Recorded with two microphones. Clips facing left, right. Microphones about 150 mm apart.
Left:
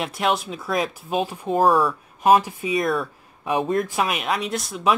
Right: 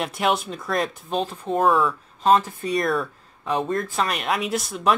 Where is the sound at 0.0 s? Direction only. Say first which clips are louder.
Even; centre (ahead or behind).